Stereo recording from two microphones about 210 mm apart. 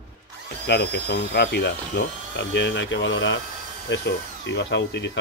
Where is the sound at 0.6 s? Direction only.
50° left (ahead or behind).